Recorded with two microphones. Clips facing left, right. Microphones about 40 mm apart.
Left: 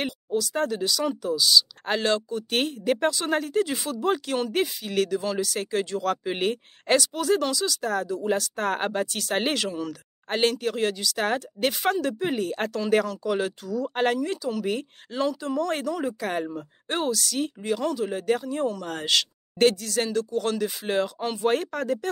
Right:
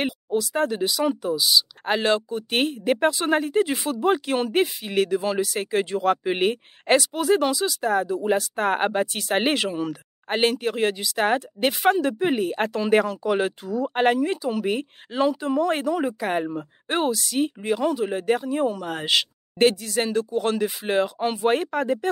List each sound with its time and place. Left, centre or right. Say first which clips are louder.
0.0 s speech: right 3 dB; centre